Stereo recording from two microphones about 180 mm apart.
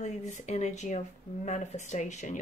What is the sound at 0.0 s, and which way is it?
Speech, 40° left (ahead or behind).